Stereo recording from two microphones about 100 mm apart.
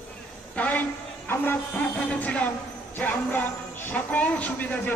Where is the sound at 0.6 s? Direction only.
15° left (ahead or behind).